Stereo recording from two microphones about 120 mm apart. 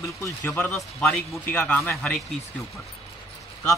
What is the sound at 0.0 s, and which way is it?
A man's voice, 25° left (ahead or behind).